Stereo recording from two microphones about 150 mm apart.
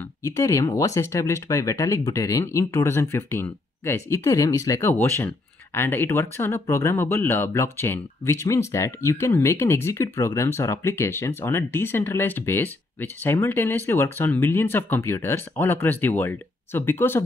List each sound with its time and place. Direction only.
0.2 s speech: 20° left (ahead or behind)